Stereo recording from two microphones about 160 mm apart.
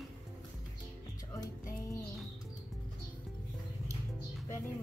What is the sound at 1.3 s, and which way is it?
Music, 20° left (ahead or behind).